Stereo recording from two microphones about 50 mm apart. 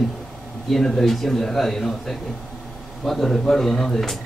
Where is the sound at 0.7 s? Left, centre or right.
Centre.